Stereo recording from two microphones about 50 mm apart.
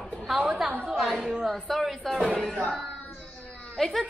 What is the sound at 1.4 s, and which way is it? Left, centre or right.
Speech, centre.